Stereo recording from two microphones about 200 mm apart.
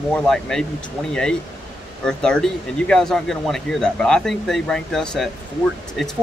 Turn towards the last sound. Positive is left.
turn(degrees=0)  # may be behind; listen again after turning